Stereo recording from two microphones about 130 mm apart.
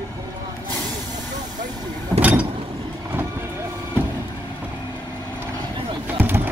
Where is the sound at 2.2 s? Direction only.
10° right (ahead or behind).